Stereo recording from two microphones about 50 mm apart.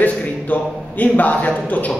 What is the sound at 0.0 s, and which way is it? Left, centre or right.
A man's voice, left.